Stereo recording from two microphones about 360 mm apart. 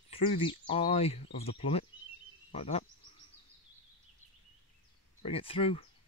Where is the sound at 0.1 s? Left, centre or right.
Centre.